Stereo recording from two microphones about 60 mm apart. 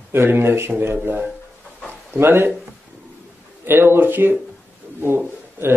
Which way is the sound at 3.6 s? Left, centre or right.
Right.